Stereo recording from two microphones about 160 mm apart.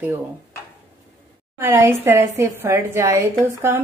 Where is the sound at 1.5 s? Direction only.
15° right (ahead or behind).